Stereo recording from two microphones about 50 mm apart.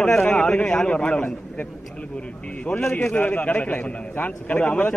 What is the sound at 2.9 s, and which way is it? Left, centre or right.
A man's voice, left.